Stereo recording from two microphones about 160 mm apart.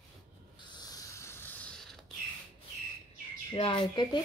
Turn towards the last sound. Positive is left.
turn(degrees=30)  # may be behind; listen again after turning